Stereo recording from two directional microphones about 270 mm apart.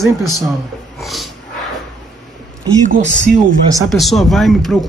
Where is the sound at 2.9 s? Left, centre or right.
Right.